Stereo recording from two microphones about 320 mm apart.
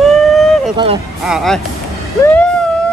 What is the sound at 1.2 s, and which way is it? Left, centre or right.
Speech, centre.